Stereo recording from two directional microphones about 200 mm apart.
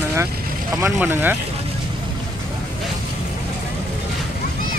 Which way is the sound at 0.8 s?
10° right (ahead or behind).